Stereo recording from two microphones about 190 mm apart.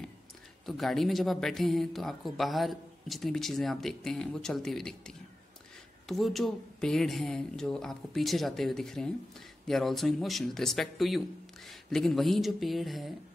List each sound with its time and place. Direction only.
0.7 s speech: centre (ahead or behind)